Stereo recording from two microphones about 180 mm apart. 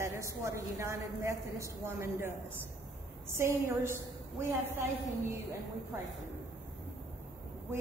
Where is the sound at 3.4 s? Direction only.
15° right (ahead or behind).